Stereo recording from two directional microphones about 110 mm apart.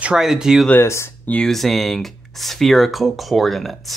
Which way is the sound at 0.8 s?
25° left (ahead or behind).